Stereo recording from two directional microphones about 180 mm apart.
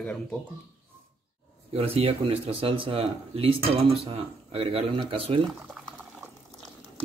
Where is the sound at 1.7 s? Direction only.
35° right (ahead or behind).